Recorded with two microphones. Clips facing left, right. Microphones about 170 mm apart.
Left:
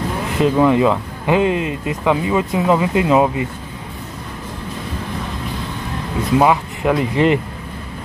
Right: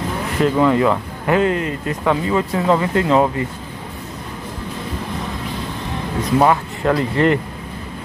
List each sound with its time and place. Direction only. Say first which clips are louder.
0.4 s speech: left 1 dB; 15° left (ahead or behind)
6.3 s speech: left 1 dB; 10° left (ahead or behind)